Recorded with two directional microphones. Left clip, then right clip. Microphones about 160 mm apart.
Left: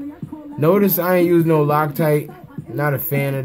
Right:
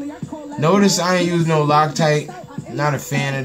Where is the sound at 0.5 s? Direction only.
60° left (ahead or behind).